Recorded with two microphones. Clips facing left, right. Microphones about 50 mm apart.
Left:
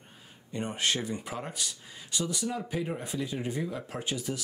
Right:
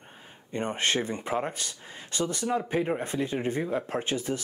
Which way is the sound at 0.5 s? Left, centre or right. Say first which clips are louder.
Right 3 dB; right.